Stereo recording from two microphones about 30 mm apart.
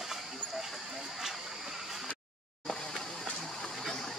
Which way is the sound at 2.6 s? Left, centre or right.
Centre.